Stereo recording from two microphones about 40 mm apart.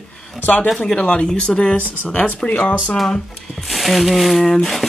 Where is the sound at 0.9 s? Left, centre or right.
Left.